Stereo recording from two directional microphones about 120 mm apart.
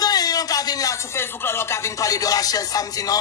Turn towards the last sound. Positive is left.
turn(degrees=30)  # may be behind; listen again after turning